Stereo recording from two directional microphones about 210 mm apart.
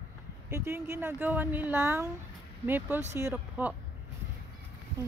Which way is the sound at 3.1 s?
10° right (ahead or behind).